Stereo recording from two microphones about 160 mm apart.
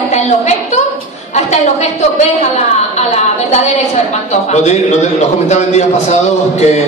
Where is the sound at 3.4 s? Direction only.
45° left (ahead or behind).